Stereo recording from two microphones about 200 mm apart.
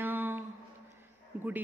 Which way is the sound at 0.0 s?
10° right (ahead or behind).